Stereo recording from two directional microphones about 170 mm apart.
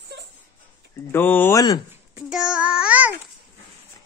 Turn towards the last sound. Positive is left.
turn(degrees=-10)  # may be behind; listen again after turning